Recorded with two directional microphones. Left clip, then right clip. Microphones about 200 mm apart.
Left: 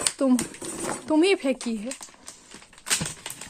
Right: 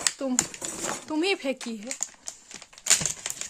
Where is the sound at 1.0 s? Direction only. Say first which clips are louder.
Left 6 dB; 15° left (ahead or behind).